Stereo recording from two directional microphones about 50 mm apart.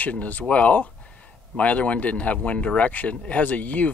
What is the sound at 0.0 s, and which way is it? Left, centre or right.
Speech, left.